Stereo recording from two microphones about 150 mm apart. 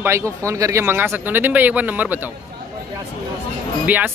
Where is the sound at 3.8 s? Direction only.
10° right (ahead or behind).